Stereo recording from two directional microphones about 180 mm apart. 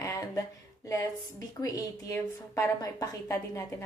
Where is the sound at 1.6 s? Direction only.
20° left (ahead or behind).